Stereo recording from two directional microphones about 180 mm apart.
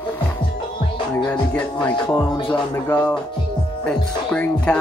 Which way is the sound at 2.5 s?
15° left (ahead or behind).